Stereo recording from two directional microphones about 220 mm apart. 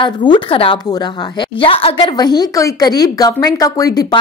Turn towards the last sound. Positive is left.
turn(degrees=15)  # may be behind; listen again after turning